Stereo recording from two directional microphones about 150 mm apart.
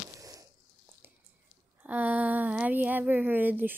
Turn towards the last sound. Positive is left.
turn(degrees=-10)  # may be behind; listen again after turning